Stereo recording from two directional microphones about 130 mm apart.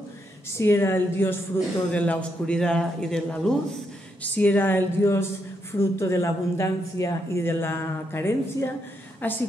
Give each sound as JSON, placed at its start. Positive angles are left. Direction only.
{"t": 0.6, "sound": "a man's voice", "side_deg": 20}